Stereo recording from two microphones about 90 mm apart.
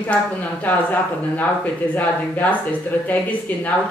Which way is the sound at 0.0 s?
15° left (ahead or behind).